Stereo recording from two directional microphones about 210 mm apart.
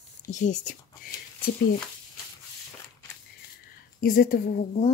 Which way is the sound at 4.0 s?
40° left (ahead or behind).